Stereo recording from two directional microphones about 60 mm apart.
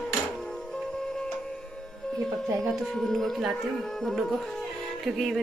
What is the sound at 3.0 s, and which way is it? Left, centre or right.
Speech, centre.